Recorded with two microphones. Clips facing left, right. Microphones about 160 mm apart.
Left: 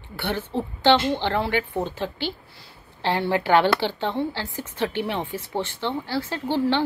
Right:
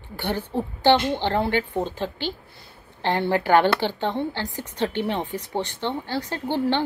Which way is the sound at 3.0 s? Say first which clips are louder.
Right 1 dB; 50° right (ahead or behind).